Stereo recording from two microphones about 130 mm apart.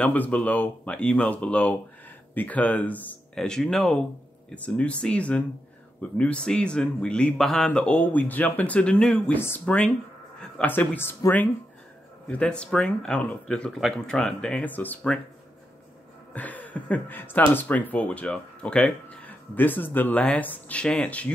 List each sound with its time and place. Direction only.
0.0 s a man's voice: 10° left (ahead or behind)
16.3 s a man's voice: 10° left (ahead or behind)